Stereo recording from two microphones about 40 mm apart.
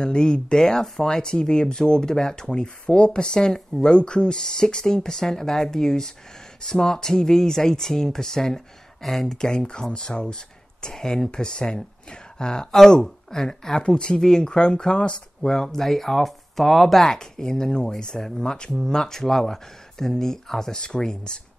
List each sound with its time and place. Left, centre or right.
0.0 s speech: left
9.4 s speech: centre